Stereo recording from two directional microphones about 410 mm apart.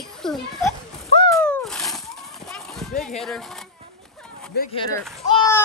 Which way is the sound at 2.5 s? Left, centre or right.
Centre.